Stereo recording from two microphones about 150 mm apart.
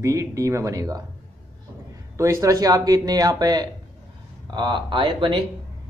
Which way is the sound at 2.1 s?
20° right (ahead or behind).